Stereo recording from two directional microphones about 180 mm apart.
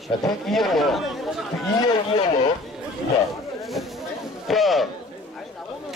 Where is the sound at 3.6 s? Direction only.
Centre (ahead or behind).